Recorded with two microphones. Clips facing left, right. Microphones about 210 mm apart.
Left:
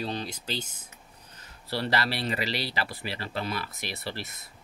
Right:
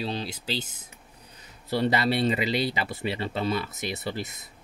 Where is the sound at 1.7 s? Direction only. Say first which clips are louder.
Right 5 dB; 20° right (ahead or behind).